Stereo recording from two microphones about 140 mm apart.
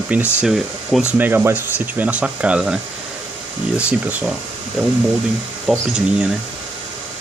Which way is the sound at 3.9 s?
10° right (ahead or behind).